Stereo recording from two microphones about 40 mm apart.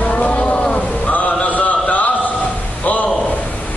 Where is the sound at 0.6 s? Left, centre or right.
Left.